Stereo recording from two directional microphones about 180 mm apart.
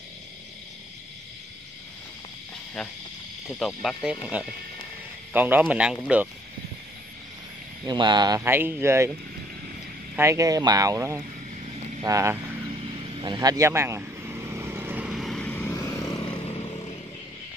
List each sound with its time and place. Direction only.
3.4 s speech: centre (ahead or behind)
7.8 s speech: 25° right (ahead or behind)
10.1 s speech: 15° right (ahead or behind)
12.7 s vehicle: 30° right (ahead or behind); by 16.2 s 15° left (ahead or behind)
16.4 s vehicle: 35° left (ahead or behind)